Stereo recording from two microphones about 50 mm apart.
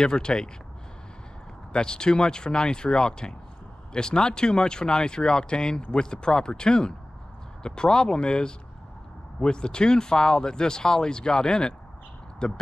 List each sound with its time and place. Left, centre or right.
0.0 s speech: centre
1.7 s speech: centre